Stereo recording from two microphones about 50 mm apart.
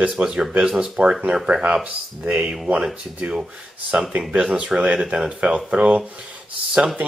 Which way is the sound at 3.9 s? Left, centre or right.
Right.